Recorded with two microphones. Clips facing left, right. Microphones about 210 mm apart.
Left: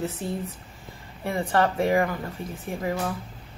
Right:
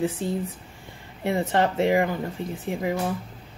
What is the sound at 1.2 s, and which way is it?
Speech, 20° right (ahead or behind).